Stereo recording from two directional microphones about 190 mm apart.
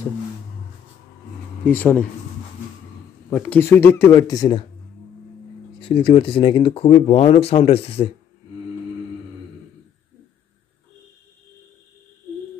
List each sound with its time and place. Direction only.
1.6 s speech: 10° left (ahead or behind)
3.3 s speech: 10° left (ahead or behind)
5.8 s speech: 25° left (ahead or behind)